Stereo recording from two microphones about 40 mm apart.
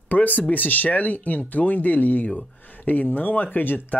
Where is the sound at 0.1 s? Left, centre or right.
Left.